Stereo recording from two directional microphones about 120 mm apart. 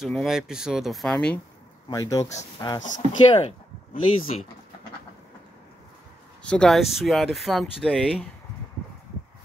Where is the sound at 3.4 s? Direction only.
60° left (ahead or behind).